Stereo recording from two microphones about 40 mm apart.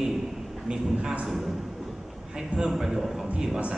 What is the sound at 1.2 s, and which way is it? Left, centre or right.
Speech, centre.